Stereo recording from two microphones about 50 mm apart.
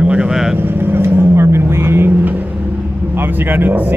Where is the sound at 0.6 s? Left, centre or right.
Right.